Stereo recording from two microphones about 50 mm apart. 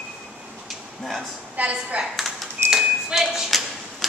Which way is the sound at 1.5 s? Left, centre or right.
Right.